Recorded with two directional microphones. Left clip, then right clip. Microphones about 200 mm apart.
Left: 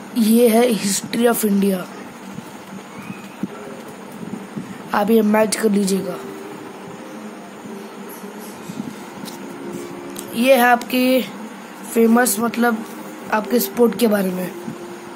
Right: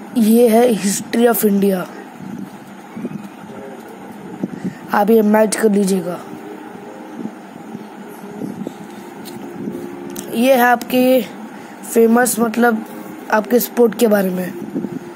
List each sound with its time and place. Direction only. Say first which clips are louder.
0.1 s a woman's voice: right 3 dB; 25° right (ahead or behind)
4.9 s a woman's voice: right 3 dB; 25° right (ahead or behind)
10.3 s a woman's voice: right 1 dB; 30° right (ahead or behind)